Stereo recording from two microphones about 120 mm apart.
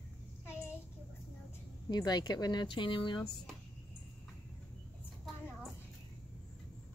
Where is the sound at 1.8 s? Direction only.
35° left (ahead or behind).